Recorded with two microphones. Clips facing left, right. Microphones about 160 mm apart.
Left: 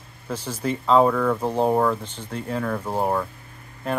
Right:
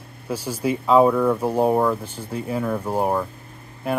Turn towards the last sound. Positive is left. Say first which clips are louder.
# right 2 dB
turn(degrees=-10)  # may be behind; listen again after turning